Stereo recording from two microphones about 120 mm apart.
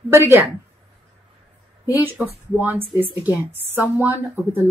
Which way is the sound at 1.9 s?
15° right (ahead or behind).